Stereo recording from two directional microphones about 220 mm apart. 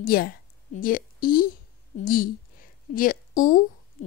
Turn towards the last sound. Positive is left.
turn(degrees=35)  # may be behind; listen again after turning